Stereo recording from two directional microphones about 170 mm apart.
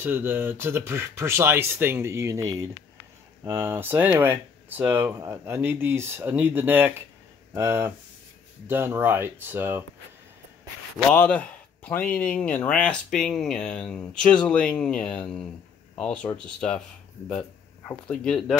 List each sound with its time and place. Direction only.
0.0 s speech: 15° right (ahead or behind)
11.1 s speech: 10° left (ahead or behind)